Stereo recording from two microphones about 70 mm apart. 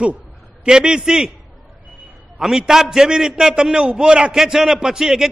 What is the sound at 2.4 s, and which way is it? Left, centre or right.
A man's voice, centre.